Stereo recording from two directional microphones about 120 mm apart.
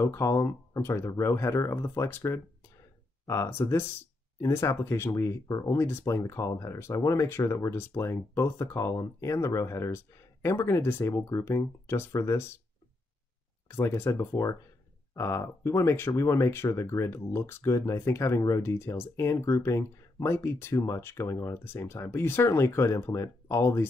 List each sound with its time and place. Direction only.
0.0 s speech: 25° left (ahead or behind)
13.7 s speech: 20° left (ahead or behind)